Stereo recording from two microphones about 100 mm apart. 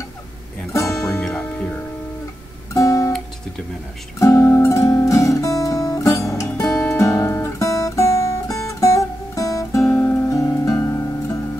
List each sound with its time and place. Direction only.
0.7 s music: 30° left (ahead or behind)
1.2 s music: 10° left (ahead or behind)
2.7 s guitar: 30° left (ahead or behind)
4.2 s guitar: 30° left (ahead or behind)
9.9 s music: 20° left (ahead or behind)